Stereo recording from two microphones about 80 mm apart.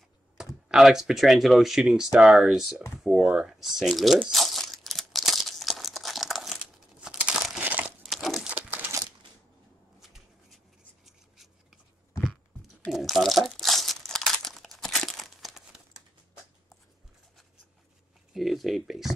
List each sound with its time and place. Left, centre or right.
0.7 s speech: centre
4.3 s crumpling: centre
7.6 s crumpling: right
8.0 s crumpling: centre
8.5 s crumpling: centre
9.9 s shuffling cards: centre
12.9 s crumpling: centre
18.3 s a sound: centre